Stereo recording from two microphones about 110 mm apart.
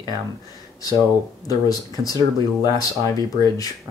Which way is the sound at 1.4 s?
35° left (ahead or behind).